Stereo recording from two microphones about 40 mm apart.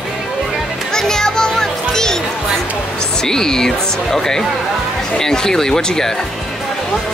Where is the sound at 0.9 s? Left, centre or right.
Centre.